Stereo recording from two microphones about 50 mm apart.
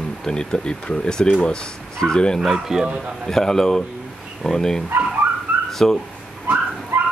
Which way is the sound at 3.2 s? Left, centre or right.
Centre.